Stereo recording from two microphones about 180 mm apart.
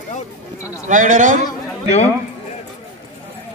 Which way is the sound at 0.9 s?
45° right (ahead or behind).